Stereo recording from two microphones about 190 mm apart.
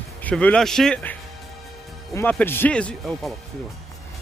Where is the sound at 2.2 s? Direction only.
10° left (ahead or behind).